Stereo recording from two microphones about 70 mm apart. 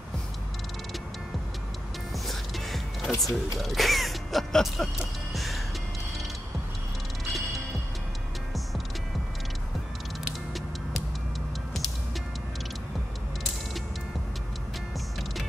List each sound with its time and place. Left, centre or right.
2.1 s music: centre
3.2 s speech: centre
4.9 s music: centre